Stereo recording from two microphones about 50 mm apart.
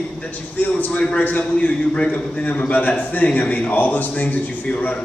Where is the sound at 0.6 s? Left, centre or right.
Left.